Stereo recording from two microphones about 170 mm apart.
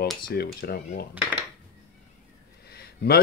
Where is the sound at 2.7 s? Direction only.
65° left (ahead or behind).